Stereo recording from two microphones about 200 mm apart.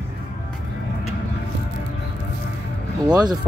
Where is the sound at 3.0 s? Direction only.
20° right (ahead or behind).